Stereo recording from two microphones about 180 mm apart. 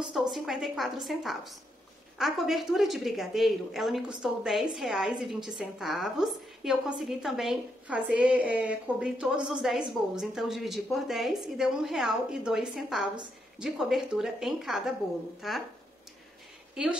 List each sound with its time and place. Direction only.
0.3 s a woman's voice: centre (ahead or behind)
16.8 s a woman's voice: 5° right (ahead or behind)